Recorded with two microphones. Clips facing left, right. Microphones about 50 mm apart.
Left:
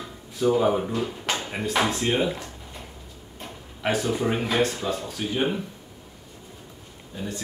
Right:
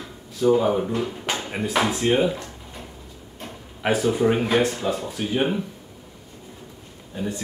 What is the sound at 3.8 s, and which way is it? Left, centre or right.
Speech, centre.